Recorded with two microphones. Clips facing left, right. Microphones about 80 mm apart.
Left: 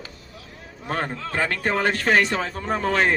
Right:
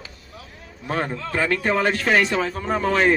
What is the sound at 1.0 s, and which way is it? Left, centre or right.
Speech, left.